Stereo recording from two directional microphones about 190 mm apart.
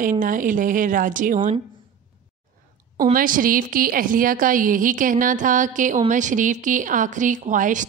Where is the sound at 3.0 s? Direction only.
45° right (ahead or behind).